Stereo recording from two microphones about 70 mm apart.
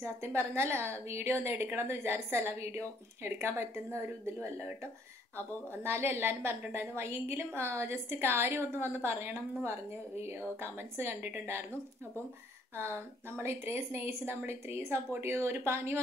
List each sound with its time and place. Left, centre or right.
0.0 s a woman's voice: right
5.9 s a woman's voice: right
12.7 s a woman's voice: right